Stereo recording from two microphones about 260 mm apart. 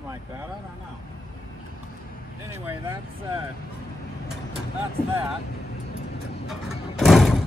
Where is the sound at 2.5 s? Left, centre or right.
Centre.